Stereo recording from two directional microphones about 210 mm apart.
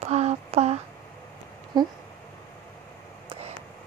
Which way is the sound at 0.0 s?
30° right (ahead or behind).